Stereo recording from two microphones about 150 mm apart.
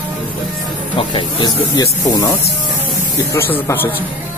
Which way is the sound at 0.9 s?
30° left (ahead or behind).